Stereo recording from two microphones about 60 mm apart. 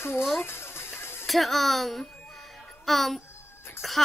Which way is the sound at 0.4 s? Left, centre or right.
Left.